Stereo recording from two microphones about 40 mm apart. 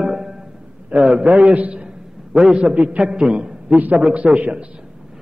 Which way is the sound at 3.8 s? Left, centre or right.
Right.